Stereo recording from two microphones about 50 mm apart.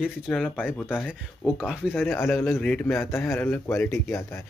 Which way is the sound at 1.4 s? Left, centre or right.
Left.